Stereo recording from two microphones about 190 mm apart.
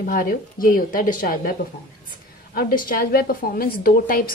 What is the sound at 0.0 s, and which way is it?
A woman's voice, 50° left (ahead or behind).